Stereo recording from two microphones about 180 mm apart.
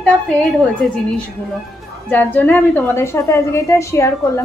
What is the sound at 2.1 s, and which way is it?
A woman's voice, 10° left (ahead or behind).